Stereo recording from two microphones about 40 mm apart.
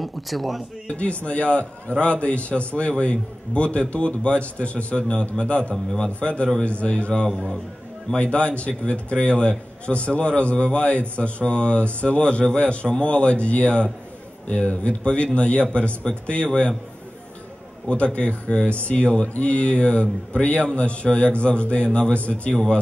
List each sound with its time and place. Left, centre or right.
0.0 s speech: centre
0.8 s a man's voice: left
17.8 s a man's voice: left
19.1 s a man's voice: left
19.4 s a man's voice: left